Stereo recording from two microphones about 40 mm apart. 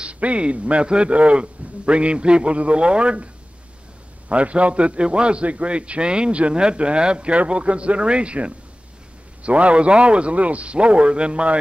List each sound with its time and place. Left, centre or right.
0.0 s a man's voice: right
4.3 s a man's voice: right